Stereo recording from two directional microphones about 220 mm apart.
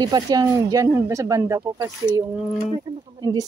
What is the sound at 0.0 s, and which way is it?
Speech, 15° right (ahead or behind).